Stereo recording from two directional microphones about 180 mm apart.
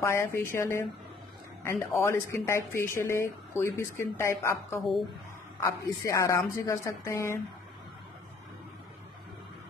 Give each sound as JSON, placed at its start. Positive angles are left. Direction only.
{"t": 0.0, "sound": "speech", "side_deg": 15}